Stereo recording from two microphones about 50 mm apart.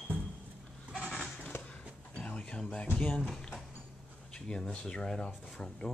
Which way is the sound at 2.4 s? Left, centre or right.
Centre.